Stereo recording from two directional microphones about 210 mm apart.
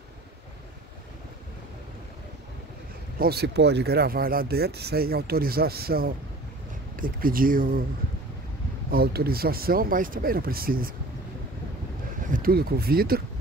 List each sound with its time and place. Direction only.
3.2 s speech: 50° right (ahead or behind)
8.9 s speech: 45° right (ahead or behind)
12.3 s speech: 45° right (ahead or behind)